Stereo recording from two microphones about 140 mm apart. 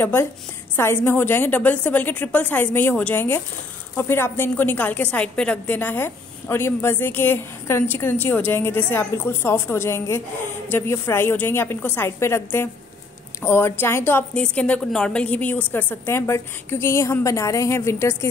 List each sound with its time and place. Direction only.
0.0 s a woman's voice: 15° left (ahead or behind)